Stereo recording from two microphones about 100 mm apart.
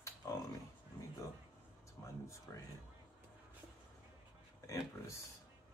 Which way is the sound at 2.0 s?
40° left (ahead or behind).